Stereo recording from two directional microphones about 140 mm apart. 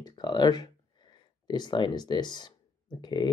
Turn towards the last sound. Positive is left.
turn(degrees=30)  # may be behind; listen again after turning